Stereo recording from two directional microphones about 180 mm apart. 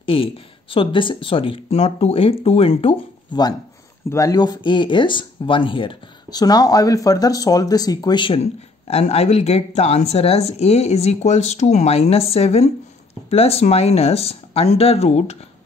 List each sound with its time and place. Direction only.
0.0 s speech: 30° left (ahead or behind)
8.8 s speech: 35° left (ahead or behind)